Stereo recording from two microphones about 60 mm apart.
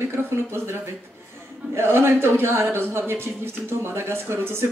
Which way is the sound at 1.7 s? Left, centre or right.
Right.